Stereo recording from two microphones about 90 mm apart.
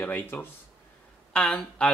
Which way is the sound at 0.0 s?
20° left (ahead or behind).